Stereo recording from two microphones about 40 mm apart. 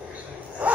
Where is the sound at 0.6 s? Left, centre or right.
Right.